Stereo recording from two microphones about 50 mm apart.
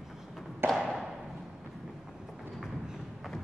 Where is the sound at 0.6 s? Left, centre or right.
Right.